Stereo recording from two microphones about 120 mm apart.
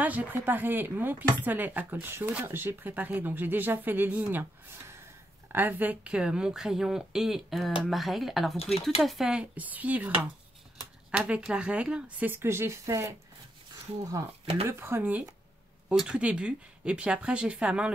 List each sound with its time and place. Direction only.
0.0 s speech: 15° right (ahead or behind)
14.7 s speech: 20° right (ahead or behind)